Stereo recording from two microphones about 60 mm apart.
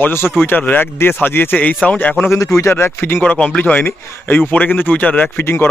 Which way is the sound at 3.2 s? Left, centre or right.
Left.